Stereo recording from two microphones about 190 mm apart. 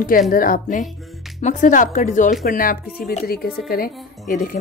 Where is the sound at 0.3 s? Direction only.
45° left (ahead or behind).